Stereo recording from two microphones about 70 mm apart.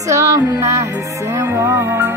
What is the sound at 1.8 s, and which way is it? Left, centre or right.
Music, right.